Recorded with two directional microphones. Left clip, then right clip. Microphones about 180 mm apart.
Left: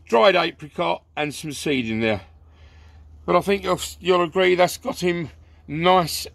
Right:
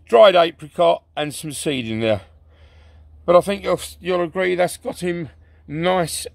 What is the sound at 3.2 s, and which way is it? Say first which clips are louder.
A man's voice: right 4 dB; 55° right (ahead or behind).